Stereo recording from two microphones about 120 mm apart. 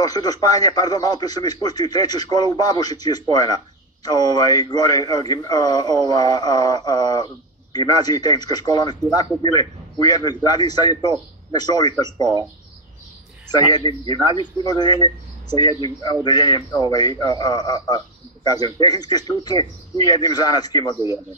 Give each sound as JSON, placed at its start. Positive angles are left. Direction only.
{"t": 0.0, "sound": "speech", "side_deg": 30}
{"t": 13.5, "sound": "speech", "side_deg": 35}